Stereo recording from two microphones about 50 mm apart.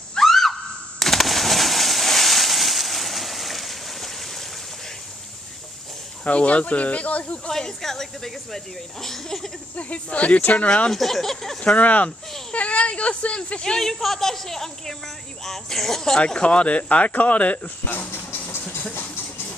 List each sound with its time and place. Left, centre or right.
0.2 s a sound: centre
6.2 s speech: left
7.4 s speech: centre
9.8 s speech: left
10.9 s speech: centre
11.6 s speech: left; by 16.2 s centre
16.2 s speech: left
17.9 s speech: left